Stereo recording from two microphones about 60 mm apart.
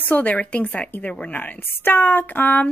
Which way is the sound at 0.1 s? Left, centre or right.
Left.